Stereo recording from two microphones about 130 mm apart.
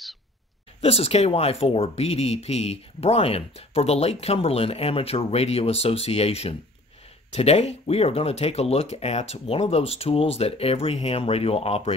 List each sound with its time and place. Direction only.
0.7 s speech: 50° left (ahead or behind)